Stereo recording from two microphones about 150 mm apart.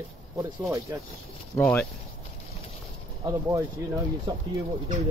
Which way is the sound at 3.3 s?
20° right (ahead or behind).